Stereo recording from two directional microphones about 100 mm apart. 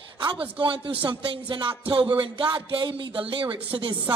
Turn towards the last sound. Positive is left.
turn(degrees=-55)  # may be behind; listen again after turning